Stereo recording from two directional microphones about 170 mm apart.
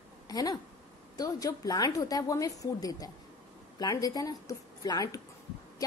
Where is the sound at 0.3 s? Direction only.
20° left (ahead or behind).